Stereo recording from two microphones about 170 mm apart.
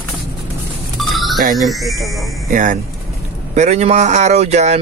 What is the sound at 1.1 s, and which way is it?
Music, centre (ahead or behind).